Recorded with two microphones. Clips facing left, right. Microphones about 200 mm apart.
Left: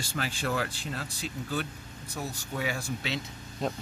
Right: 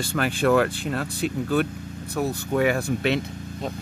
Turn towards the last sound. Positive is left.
turn(degrees=-60)  # may be behind; listen again after turning